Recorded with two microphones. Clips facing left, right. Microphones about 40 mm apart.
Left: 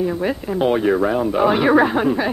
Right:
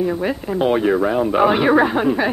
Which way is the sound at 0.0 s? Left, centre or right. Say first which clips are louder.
Even; centre.